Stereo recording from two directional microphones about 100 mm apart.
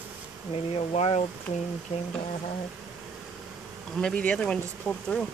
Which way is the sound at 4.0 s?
10° left (ahead or behind).